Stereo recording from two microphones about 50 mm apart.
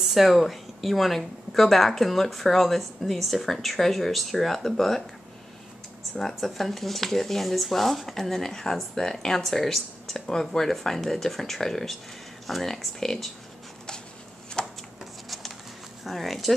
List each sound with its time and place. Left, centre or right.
0.0 s speech: centre
6.1 s speech: centre
14.6 s chopping: centre
15.2 s a sound: centre
16.0 s speech: centre